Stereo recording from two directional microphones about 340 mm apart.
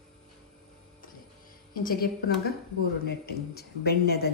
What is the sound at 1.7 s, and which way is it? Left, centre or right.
Speech, left.